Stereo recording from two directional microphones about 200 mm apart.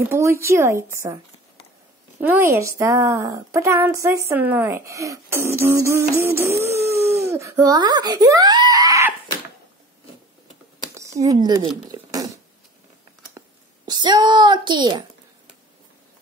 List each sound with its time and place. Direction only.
0.1 s a woman's voice: 15° right (ahead or behind)
2.1 s a woman's voice: 10° right (ahead or behind)
6.9 s a sound: 15° right (ahead or behind)
11.0 s speech: 15° right (ahead or behind)
13.8 s a child's voice: 20° right (ahead or behind)